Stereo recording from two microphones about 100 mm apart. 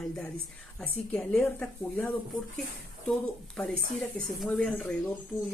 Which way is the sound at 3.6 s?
5° left (ahead or behind).